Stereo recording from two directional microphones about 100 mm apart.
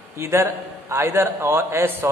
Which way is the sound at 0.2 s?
25° right (ahead or behind).